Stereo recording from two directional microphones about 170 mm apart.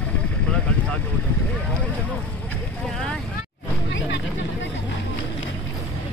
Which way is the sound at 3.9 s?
90° left.